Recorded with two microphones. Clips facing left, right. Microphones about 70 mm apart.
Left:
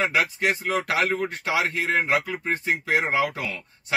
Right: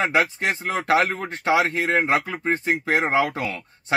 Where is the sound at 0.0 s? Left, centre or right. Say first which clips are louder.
Right 2 dB; right.